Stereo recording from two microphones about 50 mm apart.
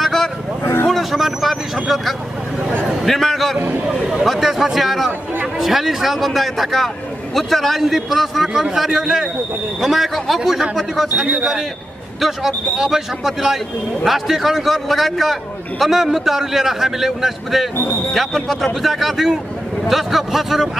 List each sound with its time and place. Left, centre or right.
0.0 s vehicle: centre
0.8 s a man's voice: centre
3.5 s a man's voice: right
3.8 s a man's voice: centre
12.7 s a man's voice: centre
17.7 s speech: left
18.1 s a man's voice: centre